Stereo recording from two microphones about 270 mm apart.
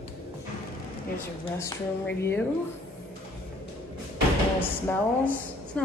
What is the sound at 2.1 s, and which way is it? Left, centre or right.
Speech, centre.